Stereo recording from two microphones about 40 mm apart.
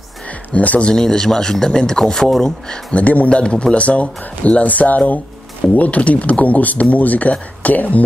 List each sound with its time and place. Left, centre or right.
0.5 s speech: left
0.9 s a man's voice: centre
2.9 s speech: left
3.3 s speech: left